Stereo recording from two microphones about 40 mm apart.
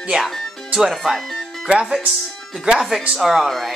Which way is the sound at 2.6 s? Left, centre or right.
Centre.